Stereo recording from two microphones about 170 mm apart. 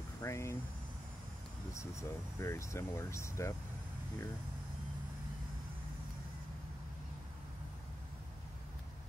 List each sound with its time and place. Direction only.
0.2 s speech: 15° left (ahead or behind)
1.7 s speech: 15° left (ahead or behind)